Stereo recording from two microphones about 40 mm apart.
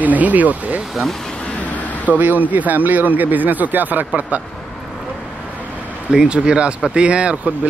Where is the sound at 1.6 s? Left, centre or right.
Left.